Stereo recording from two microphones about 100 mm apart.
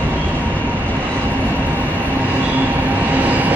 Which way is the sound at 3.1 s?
15° right (ahead or behind).